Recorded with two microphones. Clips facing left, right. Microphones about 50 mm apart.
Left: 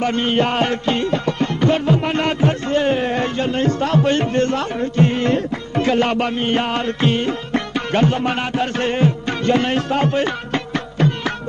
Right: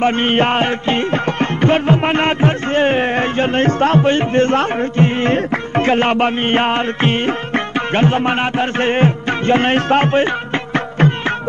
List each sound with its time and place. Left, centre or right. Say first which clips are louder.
0.0 s music: right 3 dB; right
10.2 s music: right 3 dB; right